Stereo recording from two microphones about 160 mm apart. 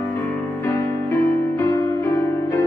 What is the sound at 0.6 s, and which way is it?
Music, 15° left (ahead or behind).